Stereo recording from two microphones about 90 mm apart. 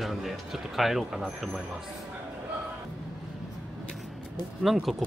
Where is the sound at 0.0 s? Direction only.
Centre (ahead or behind).